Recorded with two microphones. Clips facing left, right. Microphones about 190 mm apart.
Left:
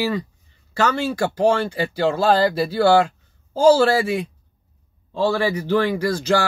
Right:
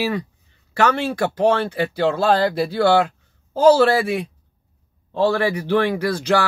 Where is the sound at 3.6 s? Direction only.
60° right (ahead or behind).